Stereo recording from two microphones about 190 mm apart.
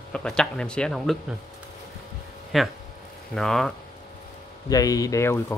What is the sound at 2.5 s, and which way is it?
Speech, centre (ahead or behind).